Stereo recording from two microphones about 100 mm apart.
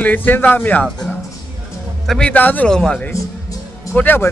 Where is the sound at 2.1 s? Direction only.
10° left (ahead or behind).